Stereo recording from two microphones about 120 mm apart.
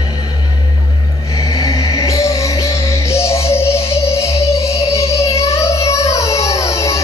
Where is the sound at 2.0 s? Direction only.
25° left (ahead or behind).